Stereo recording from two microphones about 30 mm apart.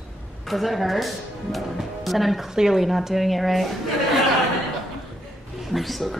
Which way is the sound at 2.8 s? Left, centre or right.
Centre.